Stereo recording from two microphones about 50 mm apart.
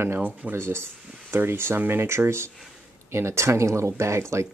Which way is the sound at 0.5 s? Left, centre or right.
Right.